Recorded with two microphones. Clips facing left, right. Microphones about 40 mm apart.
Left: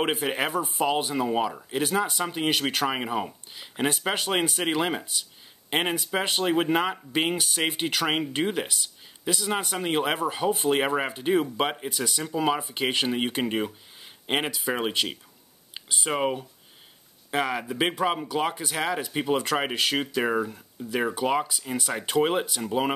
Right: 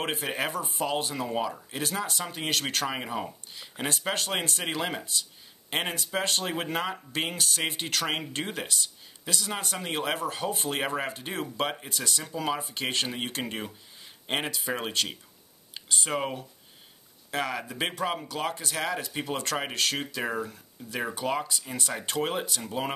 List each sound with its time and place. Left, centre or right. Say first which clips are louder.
0.1 s speech: left 4 dB; centre